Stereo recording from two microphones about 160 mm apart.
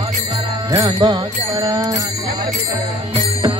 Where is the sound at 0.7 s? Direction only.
25° right (ahead or behind).